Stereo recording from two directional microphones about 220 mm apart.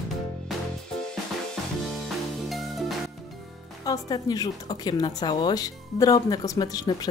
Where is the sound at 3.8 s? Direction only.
15° left (ahead or behind).